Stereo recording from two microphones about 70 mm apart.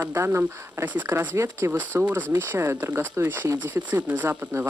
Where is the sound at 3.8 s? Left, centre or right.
Right.